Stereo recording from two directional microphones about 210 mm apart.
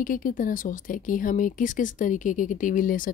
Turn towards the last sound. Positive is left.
turn(degrees=40)  # may be behind; listen again after turning